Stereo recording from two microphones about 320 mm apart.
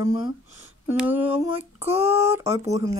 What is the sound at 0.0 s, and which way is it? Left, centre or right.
Speech, centre.